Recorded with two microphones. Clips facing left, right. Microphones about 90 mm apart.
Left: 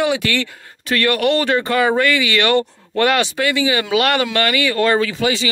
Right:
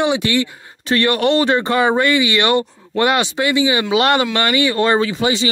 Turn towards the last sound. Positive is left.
turn(degrees=-25)  # may be behind; listen again after turning